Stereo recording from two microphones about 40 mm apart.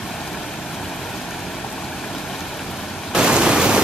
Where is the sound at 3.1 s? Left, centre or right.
Centre.